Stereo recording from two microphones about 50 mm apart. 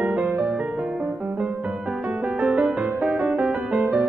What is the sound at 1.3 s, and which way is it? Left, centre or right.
Music, right.